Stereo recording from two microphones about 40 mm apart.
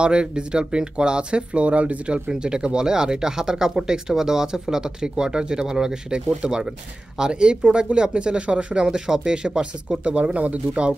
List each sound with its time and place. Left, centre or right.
0.0 s speech: right